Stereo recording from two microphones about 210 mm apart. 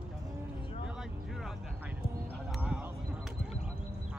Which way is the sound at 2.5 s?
5° right (ahead or behind).